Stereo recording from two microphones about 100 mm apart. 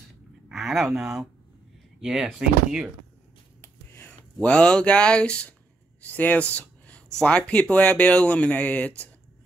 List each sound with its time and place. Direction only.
0.5 s speech: centre (ahead or behind)
3.6 s a sound: 25° left (ahead or behind)
4.4 s speech: 10° left (ahead or behind)